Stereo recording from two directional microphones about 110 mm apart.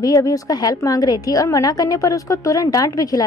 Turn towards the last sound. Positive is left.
turn(degrees=35)  # may be behind; listen again after turning